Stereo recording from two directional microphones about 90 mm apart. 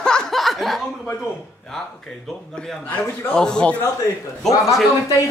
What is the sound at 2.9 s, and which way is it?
Speech, 20° left (ahead or behind).